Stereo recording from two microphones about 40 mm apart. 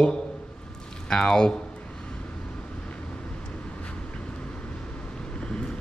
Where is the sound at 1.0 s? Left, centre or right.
Left.